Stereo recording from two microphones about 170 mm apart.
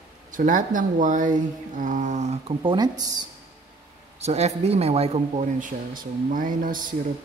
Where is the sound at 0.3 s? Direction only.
50° right (ahead or behind); by 3.3 s 25° right (ahead or behind).